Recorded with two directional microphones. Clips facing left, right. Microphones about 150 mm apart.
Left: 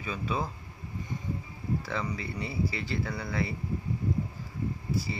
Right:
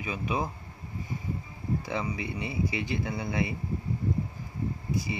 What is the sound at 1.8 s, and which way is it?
Speech, 15° right (ahead or behind).